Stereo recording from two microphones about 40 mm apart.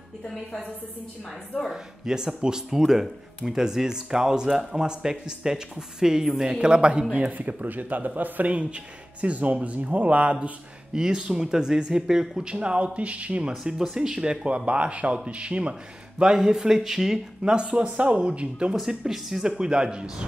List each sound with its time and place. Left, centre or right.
1.7 s speech: centre
7.2 s speech: right
11.0 s speech: centre
13.9 s a man's voice: right
16.2 s speech: centre
17.4 s speech: right
18.9 s speech: centre
19.4 s a man's voice: right